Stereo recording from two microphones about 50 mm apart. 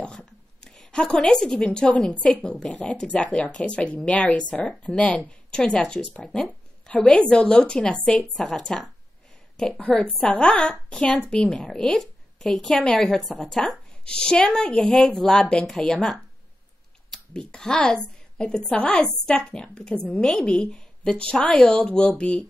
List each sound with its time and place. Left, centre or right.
0.0 s a sound: centre
2.4 s speech: centre
6.2 s a woman's voice: centre
6.9 s a woman's voice: left; by 8.9 s centre
9.8 s speech: left
11.5 s a woman's voice: centre
14.0 s a woman's voice: centre
15.3 s a woman's voice: left
17.3 s a woman's voice: centre